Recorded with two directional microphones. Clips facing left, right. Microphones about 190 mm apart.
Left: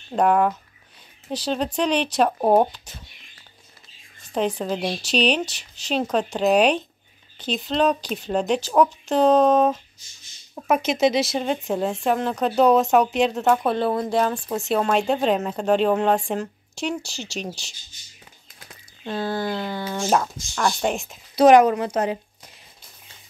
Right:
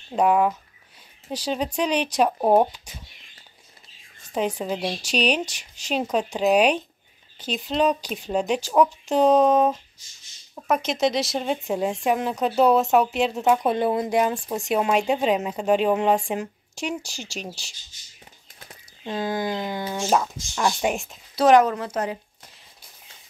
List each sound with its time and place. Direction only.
0.1 s speech: 5° right (ahead or behind)
4.3 s speech: 10° right (ahead or behind)
10.5 s speech: 5° left (ahead or behind)
19.0 s speech: 15° right (ahead or behind)
21.4 s speech: 15° left (ahead or behind)